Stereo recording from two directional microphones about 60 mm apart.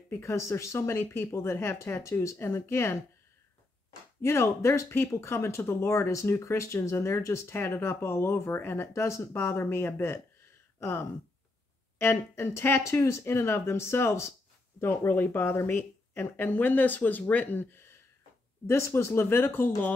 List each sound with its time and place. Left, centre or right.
0.2 s speech: left
4.2 s speech: left
8.9 s speech: left
12.0 s speech: left
12.8 s speech: left